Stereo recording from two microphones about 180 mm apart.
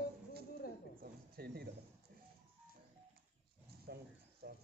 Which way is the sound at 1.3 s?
60° right (ahead or behind).